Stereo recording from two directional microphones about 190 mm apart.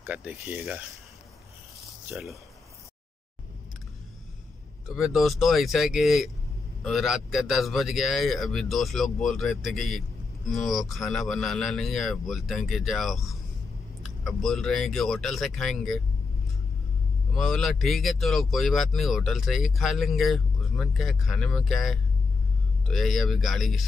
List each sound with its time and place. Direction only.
0.0 s speech: 5° right (ahead or behind)
2.0 s speech: 5° right (ahead or behind)
4.8 s speech: centre (ahead or behind)
17.3 s speech: centre (ahead or behind)